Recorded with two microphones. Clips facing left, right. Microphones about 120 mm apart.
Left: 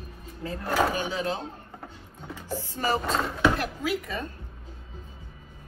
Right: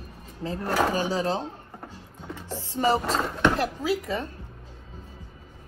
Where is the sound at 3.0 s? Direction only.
5° right (ahead or behind).